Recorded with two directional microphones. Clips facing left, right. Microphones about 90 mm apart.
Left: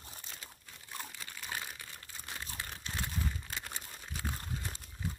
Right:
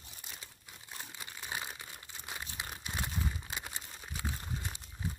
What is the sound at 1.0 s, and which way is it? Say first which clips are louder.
Crumpling: right 1 dB; 20° right (ahead or behind).